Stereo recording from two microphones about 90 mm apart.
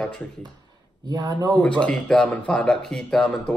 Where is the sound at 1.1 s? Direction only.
45° right (ahead or behind).